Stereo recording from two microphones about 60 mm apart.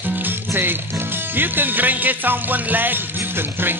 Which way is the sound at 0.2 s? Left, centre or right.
Right.